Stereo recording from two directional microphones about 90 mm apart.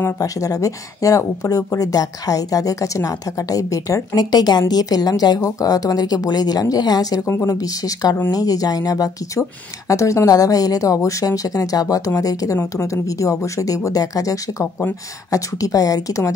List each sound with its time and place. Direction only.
0.2 s speech: 40° left (ahead or behind)